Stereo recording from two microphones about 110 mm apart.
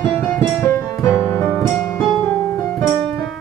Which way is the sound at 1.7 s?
5° left (ahead or behind).